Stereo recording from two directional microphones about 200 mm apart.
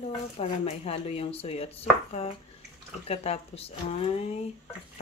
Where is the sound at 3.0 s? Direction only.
30° left (ahead or behind).